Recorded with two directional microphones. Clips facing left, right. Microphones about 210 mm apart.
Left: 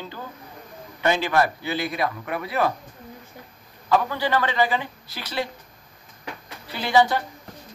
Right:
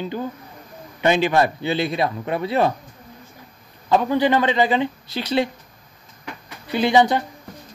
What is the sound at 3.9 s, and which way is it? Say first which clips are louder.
A man's voice: right 5 dB; 20° right (ahead or behind).